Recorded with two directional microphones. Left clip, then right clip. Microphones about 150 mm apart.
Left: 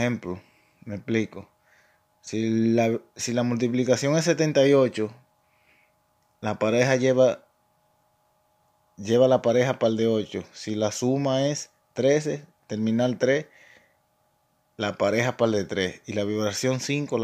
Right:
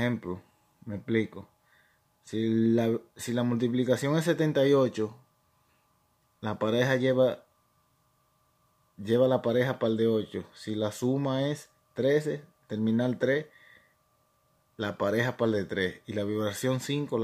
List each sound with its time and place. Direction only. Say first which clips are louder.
0.3 s speech: left 3 dB; 20° left (ahead or behind)
6.4 s speech: left 5 dB; 20° left (ahead or behind)
9.0 s speech: left 5 dB; 20° left (ahead or behind)